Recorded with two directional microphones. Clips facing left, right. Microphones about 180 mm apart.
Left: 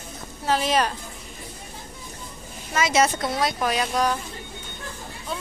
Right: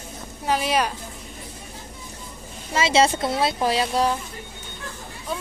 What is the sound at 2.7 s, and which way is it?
Speech, 30° right (ahead or behind).